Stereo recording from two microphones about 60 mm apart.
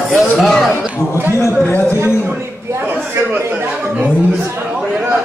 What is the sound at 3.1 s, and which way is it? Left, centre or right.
Speech, right.